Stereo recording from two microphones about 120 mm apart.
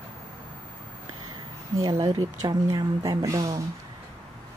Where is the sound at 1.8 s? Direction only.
35° right (ahead or behind).